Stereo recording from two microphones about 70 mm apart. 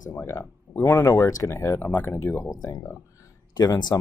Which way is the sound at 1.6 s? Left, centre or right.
Left.